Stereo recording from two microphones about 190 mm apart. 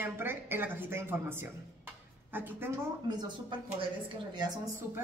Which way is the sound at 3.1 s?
25° right (ahead or behind).